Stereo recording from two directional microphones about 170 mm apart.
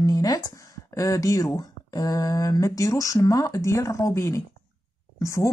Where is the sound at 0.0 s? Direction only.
20° left (ahead or behind).